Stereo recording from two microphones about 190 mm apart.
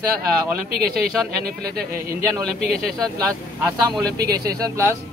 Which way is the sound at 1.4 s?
55° right (ahead or behind).